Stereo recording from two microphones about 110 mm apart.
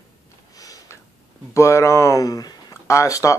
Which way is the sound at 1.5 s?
25° left (ahead or behind).